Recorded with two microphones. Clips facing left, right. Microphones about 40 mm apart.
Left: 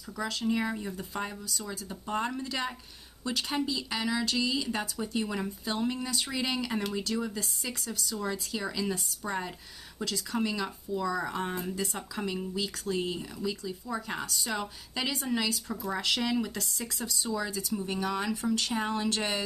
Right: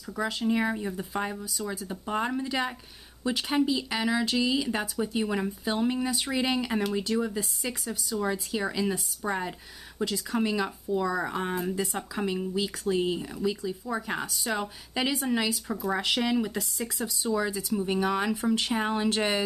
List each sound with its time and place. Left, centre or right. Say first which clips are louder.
0.1 s speech: right 3 dB; centre